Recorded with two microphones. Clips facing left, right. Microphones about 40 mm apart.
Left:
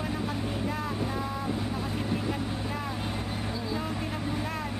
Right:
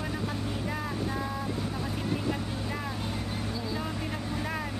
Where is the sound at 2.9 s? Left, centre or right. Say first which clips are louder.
Left 1 dB; centre.